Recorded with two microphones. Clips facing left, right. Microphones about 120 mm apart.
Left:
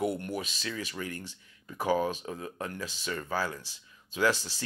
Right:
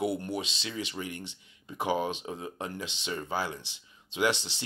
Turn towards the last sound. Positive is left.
turn(degrees=-25)  # may be behind; listen again after turning